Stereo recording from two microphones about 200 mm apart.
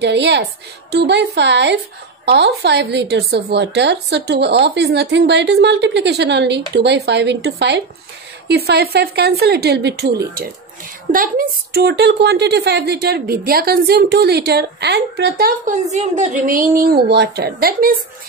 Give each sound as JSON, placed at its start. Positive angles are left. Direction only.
{"t": 0.0, "sound": "a woman's voice", "side_deg": -60}